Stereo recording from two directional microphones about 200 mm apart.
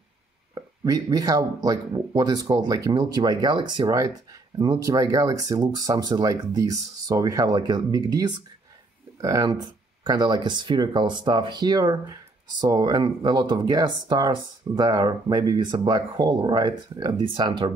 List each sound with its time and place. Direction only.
0.6 s speech: 20° right (ahead or behind)